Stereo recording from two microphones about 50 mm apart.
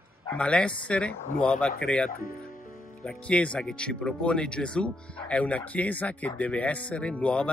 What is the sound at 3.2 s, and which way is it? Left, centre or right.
Speech, left.